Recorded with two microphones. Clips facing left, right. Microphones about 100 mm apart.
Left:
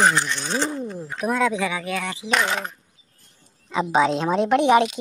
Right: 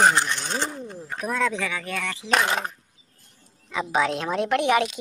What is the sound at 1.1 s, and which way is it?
Speech, 10° left (ahead or behind).